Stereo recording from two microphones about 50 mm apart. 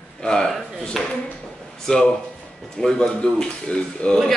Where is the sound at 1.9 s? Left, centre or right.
Centre.